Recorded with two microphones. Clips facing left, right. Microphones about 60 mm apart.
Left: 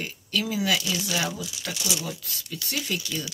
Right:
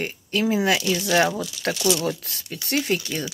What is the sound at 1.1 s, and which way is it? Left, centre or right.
Speech, right.